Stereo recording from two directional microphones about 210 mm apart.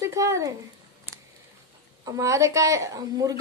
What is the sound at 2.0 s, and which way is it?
Speech, 15° right (ahead or behind).